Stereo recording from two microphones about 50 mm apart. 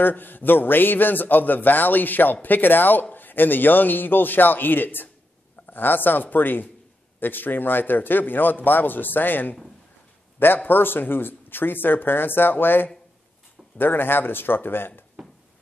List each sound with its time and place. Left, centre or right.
0.0 s speech: left